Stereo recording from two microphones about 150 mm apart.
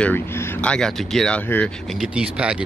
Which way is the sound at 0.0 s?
10° left (ahead or behind).